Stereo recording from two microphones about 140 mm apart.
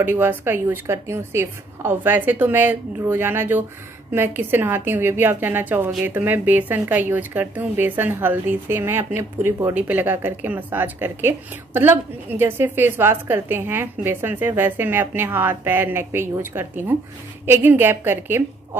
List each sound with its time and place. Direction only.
0.0 s speech: 15° right (ahead or behind)